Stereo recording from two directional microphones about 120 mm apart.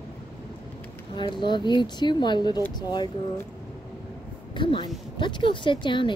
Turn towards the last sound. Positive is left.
turn(degrees=45)  # may be behind; listen again after turning